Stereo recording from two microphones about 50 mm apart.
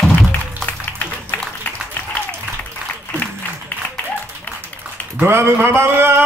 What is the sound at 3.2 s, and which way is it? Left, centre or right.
Applause, left.